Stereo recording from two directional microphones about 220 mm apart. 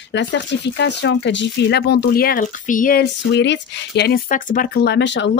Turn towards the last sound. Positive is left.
turn(degrees=55)  # may be behind; listen again after turning